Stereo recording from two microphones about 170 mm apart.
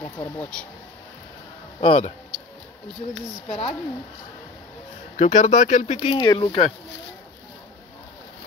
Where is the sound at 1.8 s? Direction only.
35° left (ahead or behind).